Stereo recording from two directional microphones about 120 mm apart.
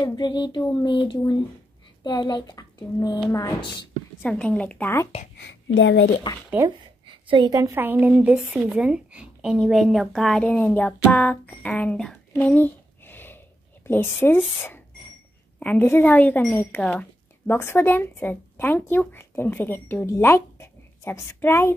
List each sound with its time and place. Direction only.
0.0 s a woman's voice: 40° left (ahead or behind)
4.3 s speech: 10° left (ahead or behind)
6.3 s a woman's voice: 35° left (ahead or behind)
7.1 s a sound: 45° right (ahead or behind)
7.4 s a woman's voice: 30° right (ahead or behind)
7.7 s speech: 15° right (ahead or behind); by 12.1 s 10° left (ahead or behind)
12.3 s a sound: 15° left (ahead or behind)
13.8 s a woman's voice: 20° left (ahead or behind)
15.6 s a woman's voice: 15° left (ahead or behind)